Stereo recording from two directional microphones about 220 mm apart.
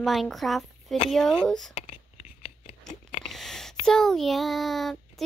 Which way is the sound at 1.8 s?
30° left (ahead or behind).